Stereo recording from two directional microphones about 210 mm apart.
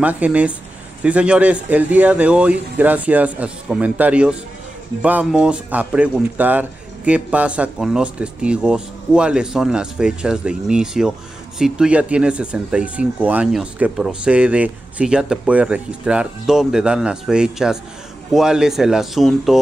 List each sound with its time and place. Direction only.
0.0 s speech: 5° right (ahead or behind)